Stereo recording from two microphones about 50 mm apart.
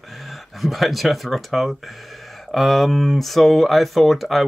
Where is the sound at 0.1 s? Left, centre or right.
Centre.